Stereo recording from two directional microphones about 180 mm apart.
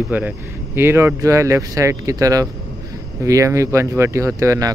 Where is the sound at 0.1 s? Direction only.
10° right (ahead or behind).